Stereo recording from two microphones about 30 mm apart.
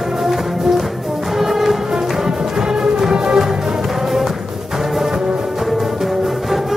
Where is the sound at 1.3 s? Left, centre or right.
Centre.